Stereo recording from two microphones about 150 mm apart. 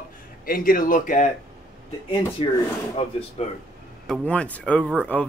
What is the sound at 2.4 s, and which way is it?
Speech, 35° left (ahead or behind).